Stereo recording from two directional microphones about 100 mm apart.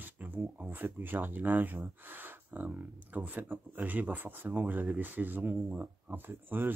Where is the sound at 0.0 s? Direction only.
20° right (ahead or behind).